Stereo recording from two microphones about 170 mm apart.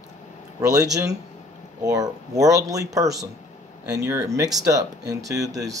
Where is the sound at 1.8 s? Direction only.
20° right (ahead or behind).